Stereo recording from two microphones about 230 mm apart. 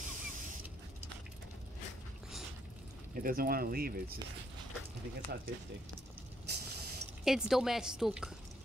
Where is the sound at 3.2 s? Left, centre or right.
Right.